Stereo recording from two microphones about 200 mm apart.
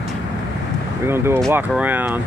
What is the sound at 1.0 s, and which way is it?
Speech, 10° right (ahead or behind).